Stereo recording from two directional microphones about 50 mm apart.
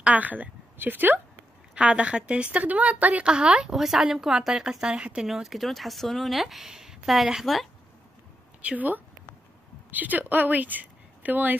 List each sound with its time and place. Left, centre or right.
0.0 s a woman's voice: right
1.8 s a woman's voice: right
3.3 s speech: centre
3.7 s speech: centre
5.3 s speech: centre
8.6 s speech: right